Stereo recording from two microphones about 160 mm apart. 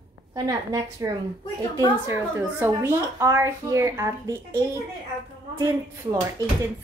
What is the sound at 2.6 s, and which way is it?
A woman's voice, 15° right (ahead or behind).